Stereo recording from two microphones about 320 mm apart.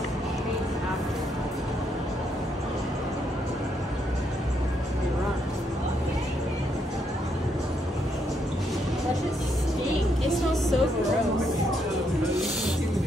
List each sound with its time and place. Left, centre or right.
10.2 s vehicle: centre
12.2 s music: centre